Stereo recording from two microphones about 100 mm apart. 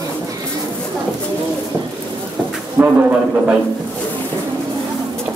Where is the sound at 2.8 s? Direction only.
20° right (ahead or behind).